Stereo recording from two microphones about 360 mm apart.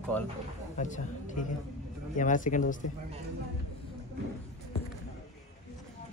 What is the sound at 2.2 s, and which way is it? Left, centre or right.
Speech, left.